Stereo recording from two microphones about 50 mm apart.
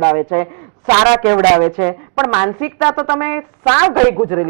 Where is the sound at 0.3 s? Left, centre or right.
Centre.